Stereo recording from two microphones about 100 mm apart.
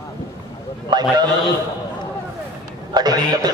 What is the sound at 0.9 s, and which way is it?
Speech, 50° right (ahead or behind).